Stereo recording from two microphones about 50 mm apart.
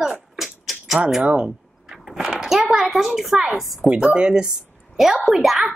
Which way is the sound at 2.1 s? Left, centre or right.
Centre.